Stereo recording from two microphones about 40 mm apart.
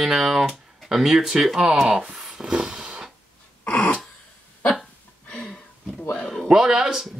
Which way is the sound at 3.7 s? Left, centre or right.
Left.